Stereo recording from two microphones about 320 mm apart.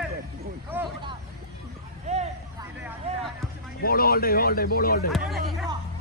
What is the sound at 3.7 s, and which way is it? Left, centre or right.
Speech, left.